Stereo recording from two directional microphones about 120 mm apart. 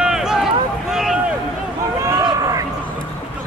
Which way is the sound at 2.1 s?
30° right (ahead or behind).